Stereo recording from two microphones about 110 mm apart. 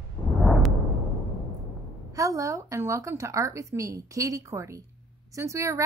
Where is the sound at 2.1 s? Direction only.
30° right (ahead or behind).